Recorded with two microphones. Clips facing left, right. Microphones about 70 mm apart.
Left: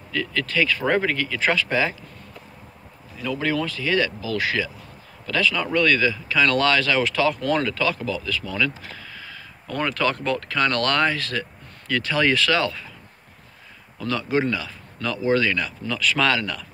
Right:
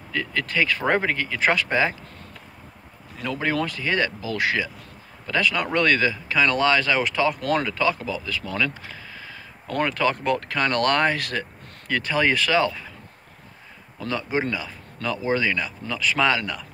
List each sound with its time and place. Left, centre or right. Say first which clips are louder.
0.1 s speech: left 1 dB; right
3.5 s speech: left 1 dB; right
6.4 s speech: even; centre
6.8 s speech: left 1 dB; right
10.2 s speech: even; right
13.9 s speech: left 2 dB; right